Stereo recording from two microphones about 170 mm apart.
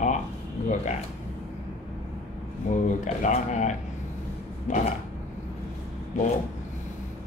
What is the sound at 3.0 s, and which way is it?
Speech, 45° left (ahead or behind).